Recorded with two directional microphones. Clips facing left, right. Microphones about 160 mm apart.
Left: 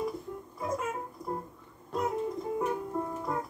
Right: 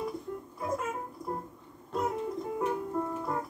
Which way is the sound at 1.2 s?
20° right (ahead or behind).